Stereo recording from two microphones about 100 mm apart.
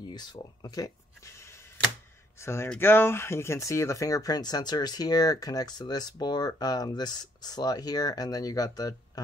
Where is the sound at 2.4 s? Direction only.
25° left (ahead or behind).